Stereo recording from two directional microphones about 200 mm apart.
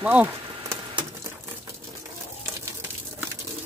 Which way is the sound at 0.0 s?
10° right (ahead or behind).